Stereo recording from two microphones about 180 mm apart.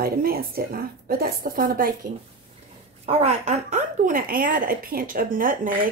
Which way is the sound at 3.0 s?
35° right (ahead or behind).